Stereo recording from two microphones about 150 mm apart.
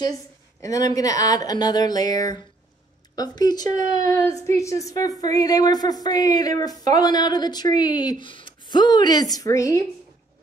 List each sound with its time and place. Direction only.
0.6 s a woman's voice: 25° left (ahead or behind)